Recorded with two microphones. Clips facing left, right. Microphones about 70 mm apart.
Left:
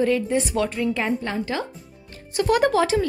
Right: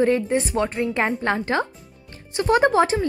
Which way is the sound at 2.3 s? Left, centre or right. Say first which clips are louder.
Right 2 dB; right.